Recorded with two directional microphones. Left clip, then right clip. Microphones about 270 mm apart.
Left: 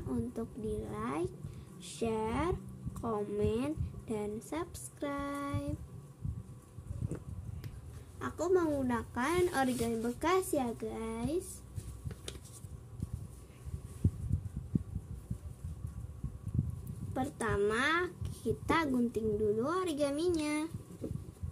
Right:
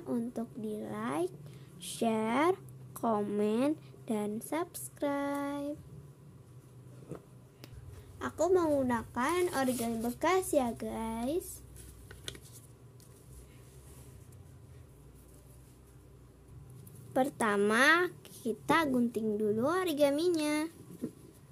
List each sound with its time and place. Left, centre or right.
0.1 s a woman's voice: centre
8.2 s a woman's voice: centre
17.1 s a woman's voice: right